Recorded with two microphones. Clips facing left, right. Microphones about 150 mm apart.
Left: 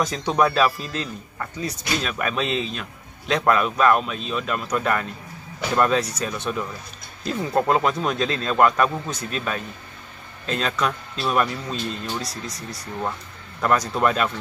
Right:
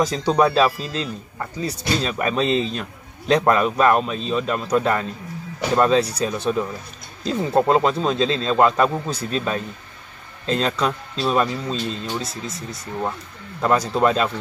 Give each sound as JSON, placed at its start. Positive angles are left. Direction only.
{"t": 0.0, "sound": "speech", "side_deg": -30}
{"t": 12.3, "sound": "speech", "side_deg": 0}
{"t": 13.6, "sound": "speech", "side_deg": -25}